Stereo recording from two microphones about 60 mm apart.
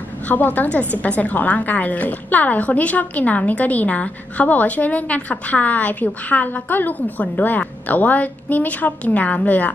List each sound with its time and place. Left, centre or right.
0.3 s a woman's voice: left